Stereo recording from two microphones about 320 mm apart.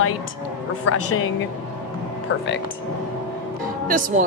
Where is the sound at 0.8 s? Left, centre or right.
Left.